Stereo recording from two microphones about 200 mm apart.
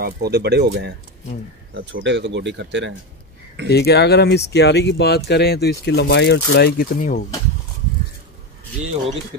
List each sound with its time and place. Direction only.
0.0 s speech: 55° right (ahead or behind)
2.0 s speech: 60° right (ahead or behind)
3.7 s speech: 55° left (ahead or behind)